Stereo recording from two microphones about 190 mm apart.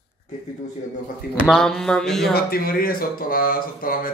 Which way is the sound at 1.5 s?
5° left (ahead or behind).